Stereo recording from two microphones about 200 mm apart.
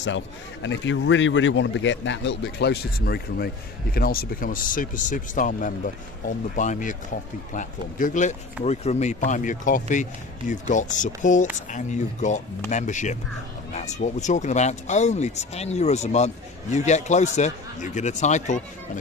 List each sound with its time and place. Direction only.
0.0 s speech: 65° left (ahead or behind); by 18.6 s 35° left (ahead or behind)